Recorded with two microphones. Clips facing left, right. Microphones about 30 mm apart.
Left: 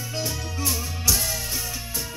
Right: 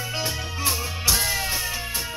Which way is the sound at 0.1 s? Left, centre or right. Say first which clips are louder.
Right 2 dB; right.